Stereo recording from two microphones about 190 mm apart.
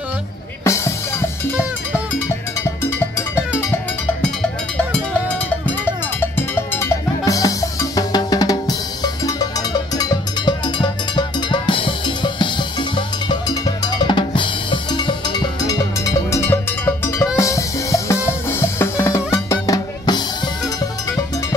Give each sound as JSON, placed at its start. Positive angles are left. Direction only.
{"t": 0.7, "sound": "music", "side_deg": 15}
{"t": 6.3, "sound": "cowbell", "side_deg": 10}
{"t": 17.4, "sound": "music", "side_deg": 15}